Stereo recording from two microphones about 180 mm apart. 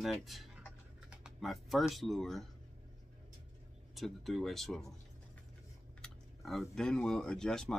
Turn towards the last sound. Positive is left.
turn(degrees=5)  # may be behind; listen again after turning